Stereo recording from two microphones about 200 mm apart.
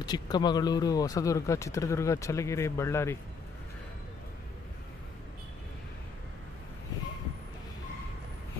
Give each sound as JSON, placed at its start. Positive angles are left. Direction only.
{"t": 0.0, "sound": "speech", "side_deg": 20}